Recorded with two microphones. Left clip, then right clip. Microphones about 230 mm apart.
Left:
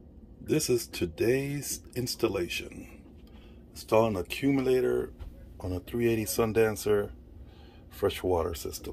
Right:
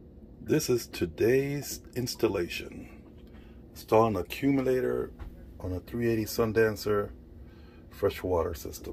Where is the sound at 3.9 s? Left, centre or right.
Centre.